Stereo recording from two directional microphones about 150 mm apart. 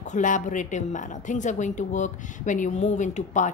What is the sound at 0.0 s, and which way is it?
A woman's voice, 55° left (ahead or behind).